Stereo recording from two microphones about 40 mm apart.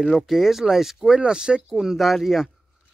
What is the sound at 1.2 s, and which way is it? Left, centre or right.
Speech, right.